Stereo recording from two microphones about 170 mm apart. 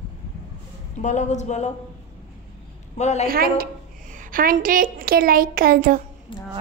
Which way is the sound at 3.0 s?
40° left (ahead or behind).